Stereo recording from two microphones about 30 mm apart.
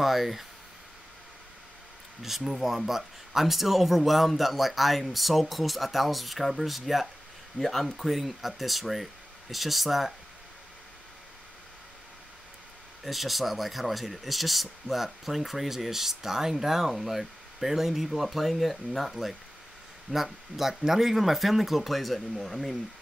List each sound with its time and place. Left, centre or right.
0.0 s speech: centre
2.2 s speech: centre
7.5 s speech: centre
13.0 s speech: centre
20.1 s speech: right
20.5 s speech: centre